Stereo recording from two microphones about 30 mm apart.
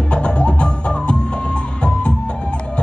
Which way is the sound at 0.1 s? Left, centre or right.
Left.